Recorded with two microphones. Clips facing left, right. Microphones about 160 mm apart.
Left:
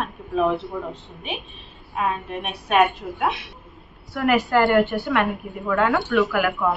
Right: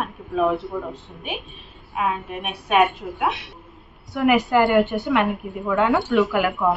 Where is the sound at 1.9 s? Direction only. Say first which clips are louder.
Even; 10° right (ahead or behind).